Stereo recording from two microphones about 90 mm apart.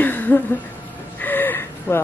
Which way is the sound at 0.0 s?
20° left (ahead or behind).